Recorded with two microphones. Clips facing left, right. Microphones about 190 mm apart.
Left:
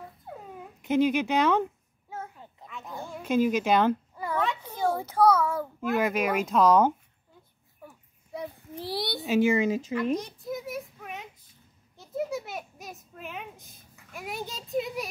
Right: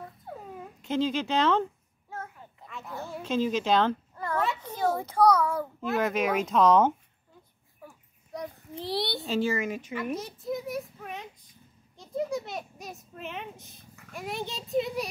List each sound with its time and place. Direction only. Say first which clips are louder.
0.8 s a sound: left 4 dB; 15° left (ahead or behind)
2.8 s speech: right 1 dB; 15° left (ahead or behind)
3.2 s a sound: left 3 dB; 10° left (ahead or behind)
4.8 s a child's voice: even; centre (ahead or behind)
7.8 s a sound: even; 5° left (ahead or behind)
8.9 s a child's voice: right 2 dB; centre (ahead or behind)
9.2 s speech: left 7 dB; 15° left (ahead or behind)
9.6 s speech: left 6 dB; 25° left (ahead or behind)
10.1 s a child's voice: left 1 dB; 5° right (ahead or behind)